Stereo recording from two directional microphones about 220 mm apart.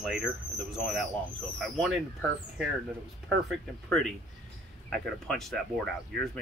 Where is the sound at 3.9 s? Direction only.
Centre (ahead or behind).